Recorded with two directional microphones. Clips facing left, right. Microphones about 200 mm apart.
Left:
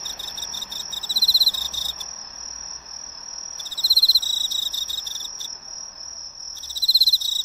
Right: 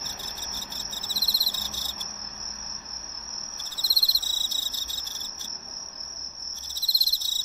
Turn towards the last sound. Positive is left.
turn(degrees=35)  # may be behind; listen again after turning